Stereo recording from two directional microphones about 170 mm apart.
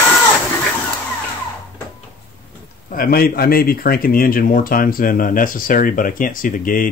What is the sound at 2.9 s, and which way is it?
Speech, 60° left (ahead or behind).